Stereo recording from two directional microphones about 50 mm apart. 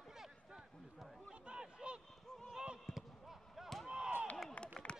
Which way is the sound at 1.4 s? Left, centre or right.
Right.